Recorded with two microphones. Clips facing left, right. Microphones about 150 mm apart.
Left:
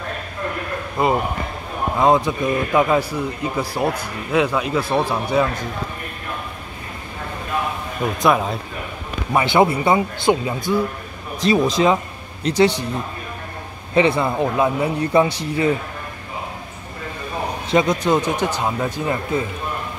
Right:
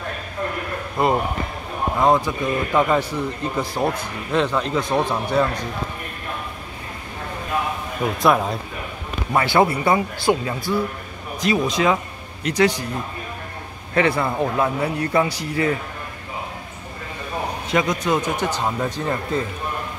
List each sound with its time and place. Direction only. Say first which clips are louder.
1.0 s speech: left 1 dB; centre (ahead or behind)
2.0 s a man's voice: left 2 dB; 20° left (ahead or behind)
8.2 s speech: even; centre (ahead or behind)
9.3 s a man's voice: left 2 dB; 20° left (ahead or behind)
11.4 s a man's voice: left 3 dB; 30° left (ahead or behind)
13.9 s a man's voice: left 3 dB; 20° left (ahead or behind)
17.6 s a man's voice: left 4 dB; 25° left (ahead or behind); by 19.4 s 10° left (ahead or behind)